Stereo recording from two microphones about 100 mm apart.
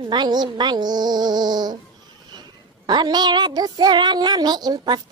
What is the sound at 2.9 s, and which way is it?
Child singing, 45° right (ahead or behind).